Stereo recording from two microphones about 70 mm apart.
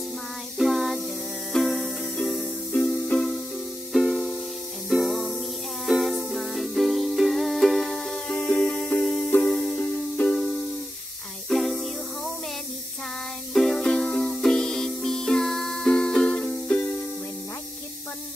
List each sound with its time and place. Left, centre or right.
0.6 s a sound: centre
1.5 s music: centre
11.4 s music: centre
13.5 s music: centre